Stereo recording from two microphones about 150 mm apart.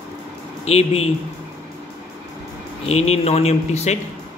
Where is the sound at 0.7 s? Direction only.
45° left (ahead or behind).